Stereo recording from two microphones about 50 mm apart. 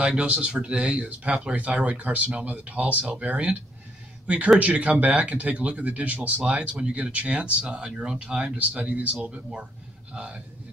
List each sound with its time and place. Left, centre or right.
0.0 s speech: right
4.6 s speech: right